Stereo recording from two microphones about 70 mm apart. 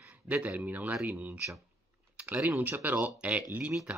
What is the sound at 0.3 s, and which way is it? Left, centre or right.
Speech, centre.